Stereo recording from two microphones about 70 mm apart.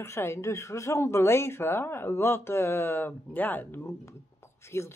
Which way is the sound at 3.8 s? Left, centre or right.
Left.